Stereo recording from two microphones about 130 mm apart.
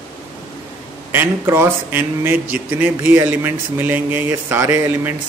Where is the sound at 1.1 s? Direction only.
15° right (ahead or behind).